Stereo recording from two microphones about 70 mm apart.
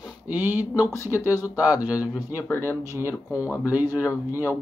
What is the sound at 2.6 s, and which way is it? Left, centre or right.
Speech, right.